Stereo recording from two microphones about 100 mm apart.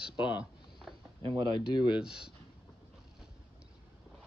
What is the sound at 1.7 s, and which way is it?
Speech, 50° left (ahead or behind).